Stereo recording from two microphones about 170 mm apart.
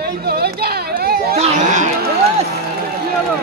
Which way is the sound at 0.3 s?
65° right (ahead or behind).